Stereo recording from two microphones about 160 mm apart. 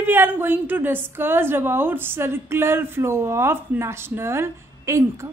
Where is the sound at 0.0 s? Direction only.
15° right (ahead or behind).